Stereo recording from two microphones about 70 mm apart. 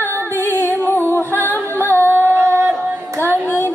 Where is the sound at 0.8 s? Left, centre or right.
Left.